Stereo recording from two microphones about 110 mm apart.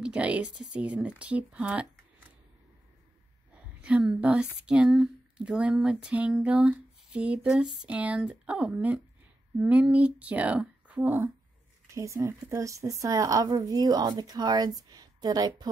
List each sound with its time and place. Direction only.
0.0 s speech: 10° right (ahead or behind)
3.5 s a woman's voice: 10° right (ahead or behind); by 15.7 s 35° right (ahead or behind)